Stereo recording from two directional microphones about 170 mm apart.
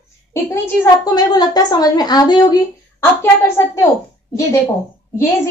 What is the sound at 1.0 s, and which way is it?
Speech, 25° left (ahead or behind).